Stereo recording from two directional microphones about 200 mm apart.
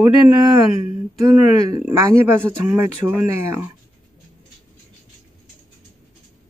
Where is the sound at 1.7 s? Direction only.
10° right (ahead or behind).